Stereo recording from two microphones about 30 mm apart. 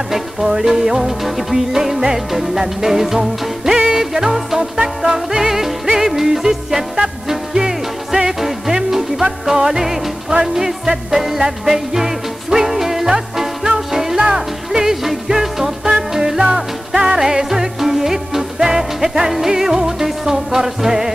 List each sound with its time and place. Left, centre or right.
0.1 s music: centre